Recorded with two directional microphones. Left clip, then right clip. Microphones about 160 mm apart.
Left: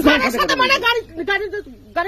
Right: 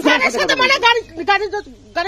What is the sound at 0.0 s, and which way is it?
Speech, 50° left (ahead or behind).